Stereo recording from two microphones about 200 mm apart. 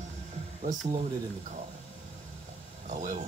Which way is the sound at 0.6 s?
40° right (ahead or behind).